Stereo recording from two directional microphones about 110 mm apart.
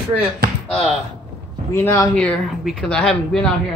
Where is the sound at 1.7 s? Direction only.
20° left (ahead or behind).